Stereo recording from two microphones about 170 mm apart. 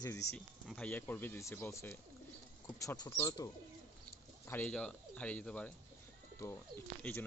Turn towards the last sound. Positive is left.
turn(degrees=15)  # may be behind; listen again after turning